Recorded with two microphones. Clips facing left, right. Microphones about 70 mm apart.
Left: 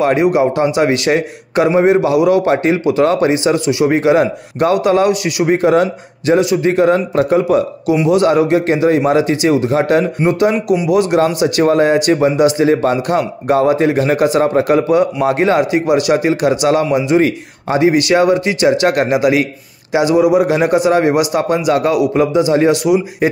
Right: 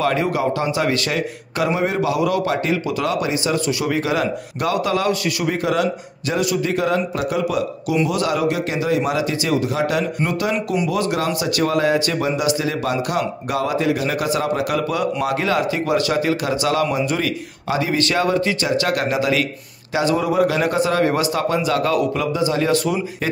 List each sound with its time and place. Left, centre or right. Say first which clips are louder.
0.0 s a man's voice: left 7 dB; left